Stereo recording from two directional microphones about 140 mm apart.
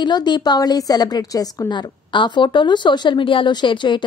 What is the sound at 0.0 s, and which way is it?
A woman's voice, 30° left (ahead or behind).